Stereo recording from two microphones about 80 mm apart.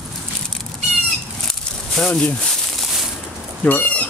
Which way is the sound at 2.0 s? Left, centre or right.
Centre.